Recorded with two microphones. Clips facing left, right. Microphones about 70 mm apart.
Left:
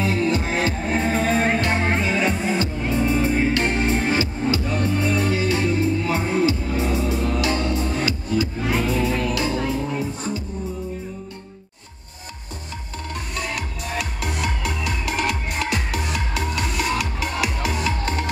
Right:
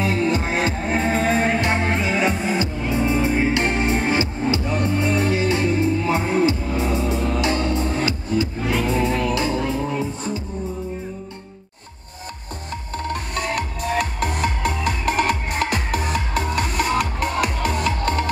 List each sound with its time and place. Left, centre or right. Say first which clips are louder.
0.0 s music: right 1 dB; centre
13.1 s music: right 3 dB; right